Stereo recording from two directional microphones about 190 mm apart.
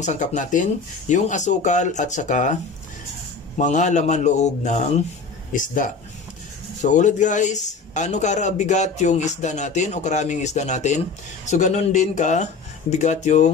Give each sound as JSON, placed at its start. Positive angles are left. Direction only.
{"t": 0.0, "sound": "a man's voice", "side_deg": 40}
{"t": 3.5, "sound": "a man's voice", "side_deg": 40}